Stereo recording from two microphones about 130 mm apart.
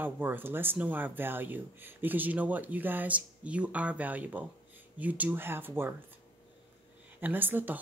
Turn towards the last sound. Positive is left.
turn(degrees=-15)  # may be behind; listen again after turning